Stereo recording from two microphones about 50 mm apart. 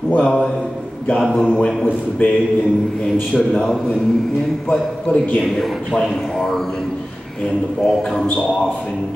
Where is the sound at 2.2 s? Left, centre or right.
Left.